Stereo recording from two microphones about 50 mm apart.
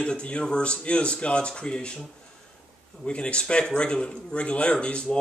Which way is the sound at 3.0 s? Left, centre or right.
Left.